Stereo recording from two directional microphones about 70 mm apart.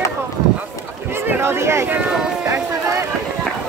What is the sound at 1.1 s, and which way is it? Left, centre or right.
Speech, right.